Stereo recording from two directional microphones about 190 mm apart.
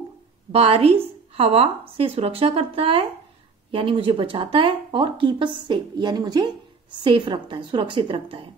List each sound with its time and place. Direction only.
0.5 s a woman's voice: 30° right (ahead or behind)